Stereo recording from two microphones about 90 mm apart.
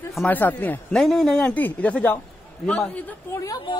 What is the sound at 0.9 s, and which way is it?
Speech, 5° left (ahead or behind).